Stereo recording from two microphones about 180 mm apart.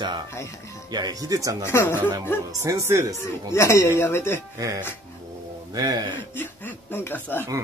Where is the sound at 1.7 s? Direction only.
15° left (ahead or behind).